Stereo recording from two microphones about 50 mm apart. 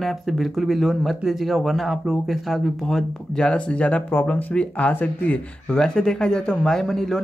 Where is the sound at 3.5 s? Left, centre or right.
Left.